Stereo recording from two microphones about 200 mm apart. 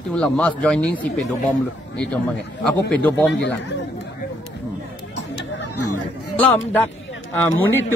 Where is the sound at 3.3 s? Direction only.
60° left (ahead or behind).